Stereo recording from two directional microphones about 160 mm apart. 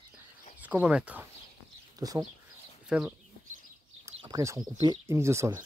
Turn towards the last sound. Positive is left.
turn(degrees=-15)  # may be behind; listen again after turning